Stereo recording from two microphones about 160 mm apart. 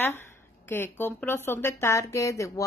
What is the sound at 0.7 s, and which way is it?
Speech, 15° left (ahead or behind).